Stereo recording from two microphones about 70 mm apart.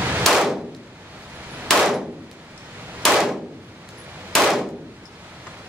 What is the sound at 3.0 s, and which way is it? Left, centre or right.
Gunshot, centre.